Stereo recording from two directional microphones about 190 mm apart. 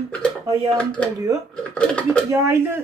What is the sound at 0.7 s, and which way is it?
Speech, 5° left (ahead or behind).